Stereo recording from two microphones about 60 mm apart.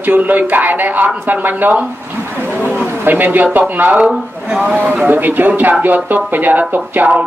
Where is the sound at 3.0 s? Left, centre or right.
Right.